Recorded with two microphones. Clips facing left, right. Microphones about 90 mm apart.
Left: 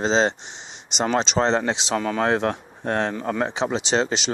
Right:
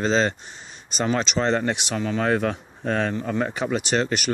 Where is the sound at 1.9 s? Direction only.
60° left (ahead or behind).